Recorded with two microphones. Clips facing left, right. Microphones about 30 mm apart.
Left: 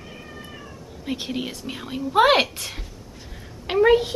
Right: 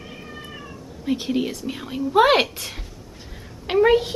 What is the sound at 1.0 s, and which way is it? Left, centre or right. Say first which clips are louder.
A woman's voice: right 5 dB; centre.